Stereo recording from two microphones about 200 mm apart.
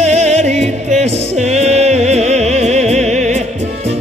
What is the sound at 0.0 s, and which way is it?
Music, 35° right (ahead or behind).